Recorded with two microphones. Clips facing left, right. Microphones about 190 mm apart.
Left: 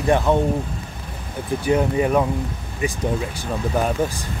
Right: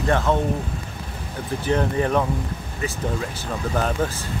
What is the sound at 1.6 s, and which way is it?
Speech, 10° left (ahead or behind).